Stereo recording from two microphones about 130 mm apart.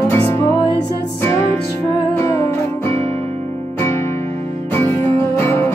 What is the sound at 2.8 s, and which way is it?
Music, 55° right (ahead or behind).